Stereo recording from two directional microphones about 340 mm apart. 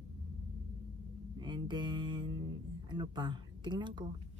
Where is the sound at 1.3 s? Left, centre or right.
Centre.